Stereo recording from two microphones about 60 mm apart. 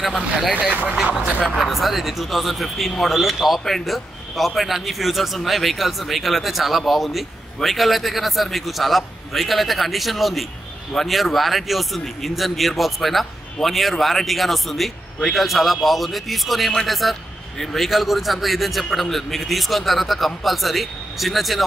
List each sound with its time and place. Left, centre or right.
0.0 s speech: centre
1.0 s speech: centre
1.5 s speech: centre